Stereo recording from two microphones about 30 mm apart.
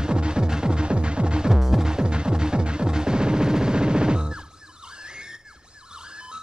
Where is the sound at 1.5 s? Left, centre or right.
Centre.